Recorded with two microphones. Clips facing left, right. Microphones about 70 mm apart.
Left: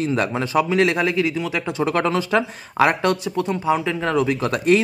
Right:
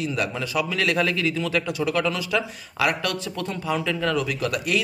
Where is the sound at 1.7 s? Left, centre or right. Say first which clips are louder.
Left 4 dB; left.